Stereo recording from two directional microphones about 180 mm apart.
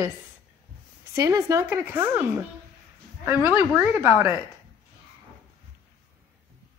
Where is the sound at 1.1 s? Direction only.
15° right (ahead or behind).